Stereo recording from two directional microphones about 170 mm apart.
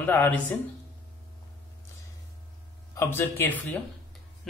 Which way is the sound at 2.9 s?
15° left (ahead or behind).